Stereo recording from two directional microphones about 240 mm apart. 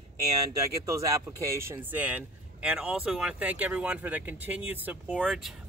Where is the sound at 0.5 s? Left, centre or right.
Centre.